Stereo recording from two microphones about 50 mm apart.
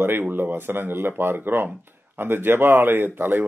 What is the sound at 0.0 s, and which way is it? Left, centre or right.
Speech, right.